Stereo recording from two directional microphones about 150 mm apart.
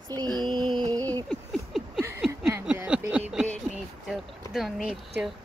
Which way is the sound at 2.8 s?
10° right (ahead or behind).